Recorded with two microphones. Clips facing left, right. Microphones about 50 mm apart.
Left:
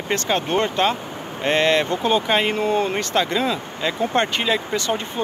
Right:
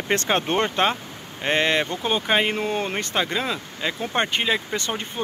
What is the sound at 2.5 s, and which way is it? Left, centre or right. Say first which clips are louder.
Speech: left 5 dB; right.